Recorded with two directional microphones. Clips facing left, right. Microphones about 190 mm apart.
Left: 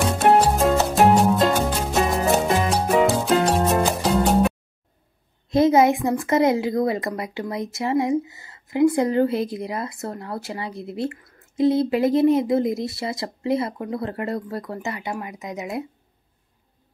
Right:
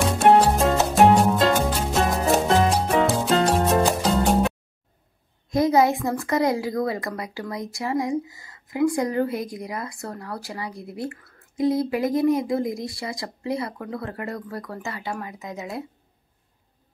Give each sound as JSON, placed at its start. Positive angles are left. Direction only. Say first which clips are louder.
{"t": 0.0, "sound": "music", "louder": "right 1 dB", "side_deg": 0}
{"t": 5.5, "sound": "a sound", "louder": "left 3 dB", "side_deg": 20}
{"t": 6.0, "sound": "a woman's voice", "louder": "left 3 dB", "side_deg": 20}